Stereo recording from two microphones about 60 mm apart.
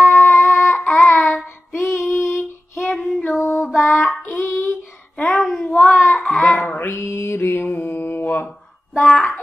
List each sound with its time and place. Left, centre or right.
0.0 s music: centre
0.3 s music: left
0.7 s child singing: left
1.7 s female singing: left
3.0 s child singing: left
3.3 s music: left
3.7 s a sound: left
5.2 s a sound: centre
5.7 s child singing: left
6.2 s mantra: left
8.9 s a sound: centre